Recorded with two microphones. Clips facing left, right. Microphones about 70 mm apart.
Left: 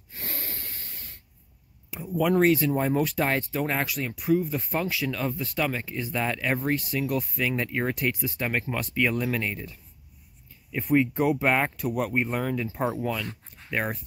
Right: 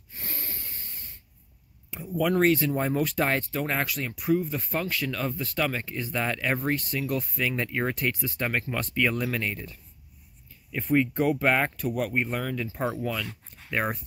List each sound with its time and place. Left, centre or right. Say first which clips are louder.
0.1 s snort: left 2 dB; left
1.9 s speech: left 2 dB; centre
10.7 s speech: left 1 dB; centre